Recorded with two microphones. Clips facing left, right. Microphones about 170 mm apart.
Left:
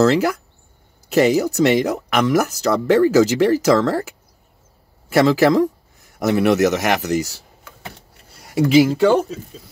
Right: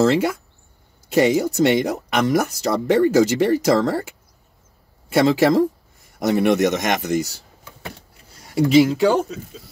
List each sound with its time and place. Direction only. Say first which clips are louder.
0.0 s speech: left 2 dB; centre (ahead or behind)
5.1 s speech: left 1 dB; centre (ahead or behind)
7.0 s speech: left 1 dB; 70° left (ahead or behind)
8.5 s speech: left 1 dB; centre (ahead or behind)